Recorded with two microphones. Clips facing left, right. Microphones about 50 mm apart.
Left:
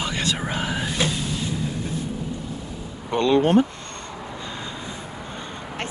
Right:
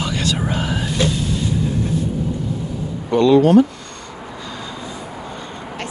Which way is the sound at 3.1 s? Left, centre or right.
Left.